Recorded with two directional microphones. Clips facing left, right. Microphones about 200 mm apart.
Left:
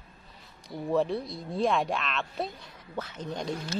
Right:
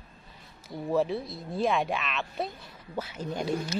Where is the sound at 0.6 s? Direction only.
Centre (ahead or behind).